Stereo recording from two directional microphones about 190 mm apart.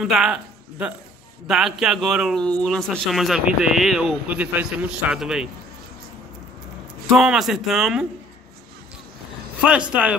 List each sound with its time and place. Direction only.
0.0 s a man's voice: centre (ahead or behind)
7.1 s speech: centre (ahead or behind)
9.7 s speech: 5° right (ahead or behind)